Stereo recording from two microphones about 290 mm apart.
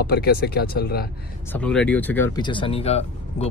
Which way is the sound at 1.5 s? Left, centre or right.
Centre.